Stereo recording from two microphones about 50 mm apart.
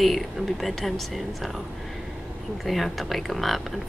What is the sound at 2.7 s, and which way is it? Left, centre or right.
Speech, centre.